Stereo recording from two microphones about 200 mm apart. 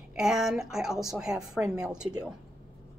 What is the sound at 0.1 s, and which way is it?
A woman's voice, 5° right (ahead or behind).